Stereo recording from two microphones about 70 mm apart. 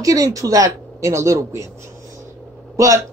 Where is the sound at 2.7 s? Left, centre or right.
Right.